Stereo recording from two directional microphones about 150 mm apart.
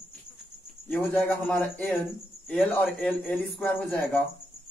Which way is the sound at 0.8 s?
10° left (ahead or behind).